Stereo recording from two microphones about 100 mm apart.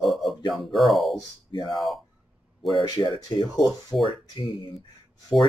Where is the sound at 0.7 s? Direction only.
Centre (ahead or behind).